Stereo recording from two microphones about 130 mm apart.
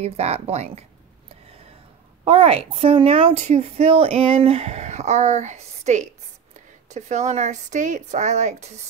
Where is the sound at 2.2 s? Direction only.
50° right (ahead or behind).